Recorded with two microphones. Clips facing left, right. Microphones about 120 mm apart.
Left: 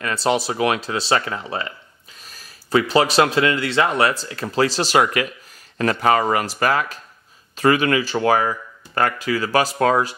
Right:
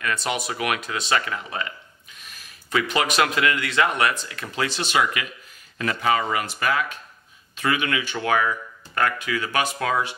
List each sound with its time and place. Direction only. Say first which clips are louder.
0.0 s speech: left 6 dB; 30° left (ahead or behind)